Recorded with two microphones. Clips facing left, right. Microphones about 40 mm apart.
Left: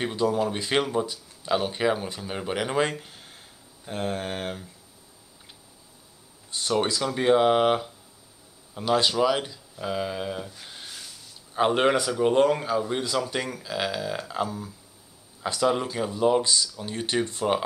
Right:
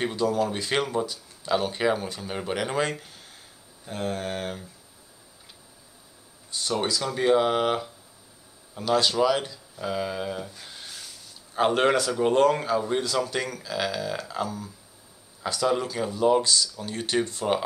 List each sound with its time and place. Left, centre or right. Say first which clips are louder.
0.1 s speech: even; centre
6.5 s a sound: even; left
7.0 s speech: even; centre